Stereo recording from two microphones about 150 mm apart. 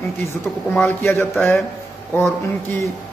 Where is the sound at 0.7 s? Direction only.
15° left (ahead or behind).